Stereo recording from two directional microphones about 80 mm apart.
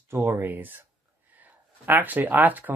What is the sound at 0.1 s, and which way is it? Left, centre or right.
Speech, right.